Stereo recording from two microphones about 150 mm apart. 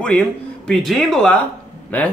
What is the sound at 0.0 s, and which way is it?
Speech, 5° left (ahead or behind).